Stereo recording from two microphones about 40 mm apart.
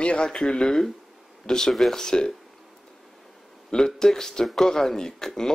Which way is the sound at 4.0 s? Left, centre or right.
Centre.